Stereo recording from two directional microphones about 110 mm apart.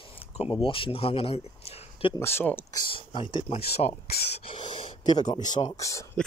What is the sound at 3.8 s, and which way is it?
Speech, 90° left.